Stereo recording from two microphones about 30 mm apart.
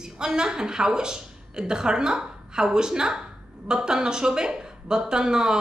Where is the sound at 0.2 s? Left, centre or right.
Right.